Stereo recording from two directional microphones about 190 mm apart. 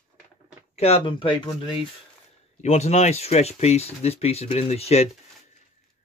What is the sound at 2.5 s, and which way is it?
Speech, 35° left (ahead or behind).